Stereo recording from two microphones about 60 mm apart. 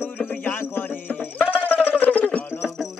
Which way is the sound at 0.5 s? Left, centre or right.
Left.